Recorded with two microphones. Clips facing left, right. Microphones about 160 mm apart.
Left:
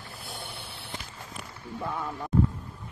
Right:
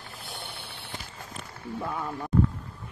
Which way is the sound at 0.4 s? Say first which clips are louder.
Even; centre (ahead or behind).